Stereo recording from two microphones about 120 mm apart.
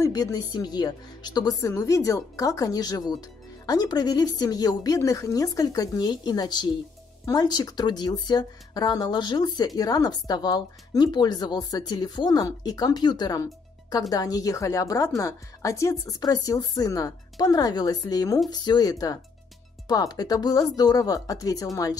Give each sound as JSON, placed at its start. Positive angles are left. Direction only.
{"t": 0.0, "sound": "a woman's voice", "side_deg": 30}